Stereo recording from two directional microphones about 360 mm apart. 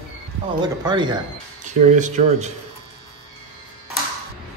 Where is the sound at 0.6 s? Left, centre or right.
Centre.